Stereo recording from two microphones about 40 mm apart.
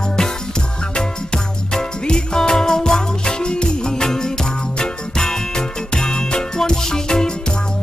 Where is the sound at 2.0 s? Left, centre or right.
Centre.